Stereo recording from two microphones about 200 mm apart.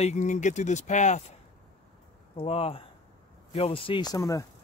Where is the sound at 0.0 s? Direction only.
35° left (ahead or behind).